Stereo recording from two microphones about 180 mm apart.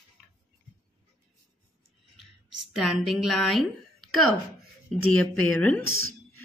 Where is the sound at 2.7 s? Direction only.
Centre (ahead or behind).